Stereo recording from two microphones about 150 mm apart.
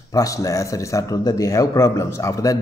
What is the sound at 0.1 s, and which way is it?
Speech, 25° left (ahead or behind).